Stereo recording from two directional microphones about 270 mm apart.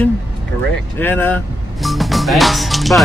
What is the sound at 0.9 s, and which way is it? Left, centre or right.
Music, centre.